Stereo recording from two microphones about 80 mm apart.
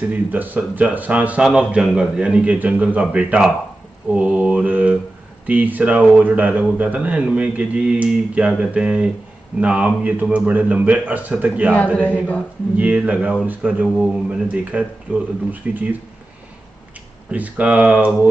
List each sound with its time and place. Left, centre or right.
0.0 s a man's voice: right
4.1 s mantra: centre
5.5 s a man's voice: centre
11.7 s a man's voice: centre
12.7 s a man's voice: centre
13.9 s speech: centre
14.3 s a man's voice: centre
17.3 s a man's voice: centre